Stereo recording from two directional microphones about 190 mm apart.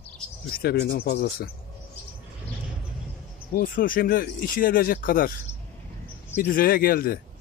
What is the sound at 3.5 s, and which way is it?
Speech, 45° left (ahead or behind).